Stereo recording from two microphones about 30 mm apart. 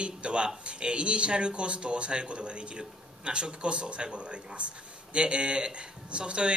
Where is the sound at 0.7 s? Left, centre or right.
Right.